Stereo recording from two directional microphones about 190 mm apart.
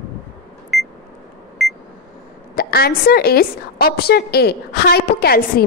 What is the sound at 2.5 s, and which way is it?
A woman's voice, 55° left (ahead or behind).